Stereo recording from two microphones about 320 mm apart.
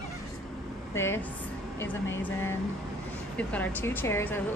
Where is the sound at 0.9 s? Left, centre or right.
Centre.